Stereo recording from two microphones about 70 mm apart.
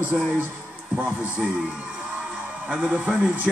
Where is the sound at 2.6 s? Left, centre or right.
Centre.